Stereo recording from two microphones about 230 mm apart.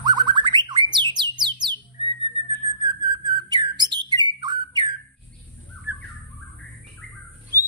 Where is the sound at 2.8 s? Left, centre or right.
Centre.